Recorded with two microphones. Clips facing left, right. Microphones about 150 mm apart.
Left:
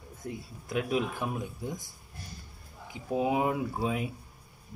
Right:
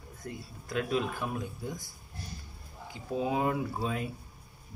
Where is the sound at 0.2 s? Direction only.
15° left (ahead or behind).